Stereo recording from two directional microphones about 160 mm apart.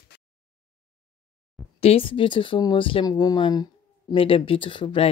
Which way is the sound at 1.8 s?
35° left (ahead or behind).